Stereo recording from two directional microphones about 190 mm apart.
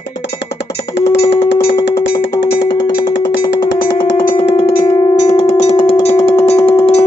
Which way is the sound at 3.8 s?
60° left (ahead or behind).